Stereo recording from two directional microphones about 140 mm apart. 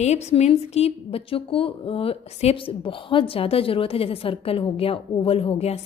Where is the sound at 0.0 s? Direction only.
50° left (ahead or behind).